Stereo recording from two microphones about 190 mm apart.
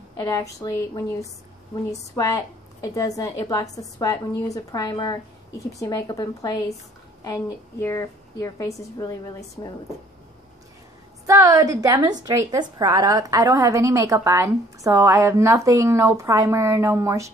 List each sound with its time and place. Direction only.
0.2 s a woman's voice: 20° left (ahead or behind)
11.2 s a woman's voice: 15° right (ahead or behind)